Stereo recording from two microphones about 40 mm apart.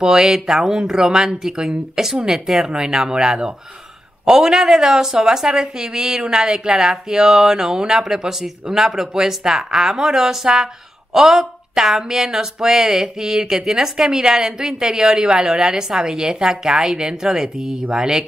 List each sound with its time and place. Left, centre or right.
0.0 s speech: centre
17.8 s mantra: centre